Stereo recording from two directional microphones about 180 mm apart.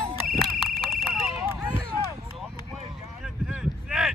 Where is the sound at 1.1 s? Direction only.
Centre (ahead or behind).